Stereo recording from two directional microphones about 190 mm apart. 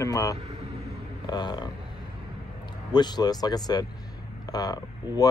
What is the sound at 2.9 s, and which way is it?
Speech, 20° left (ahead or behind).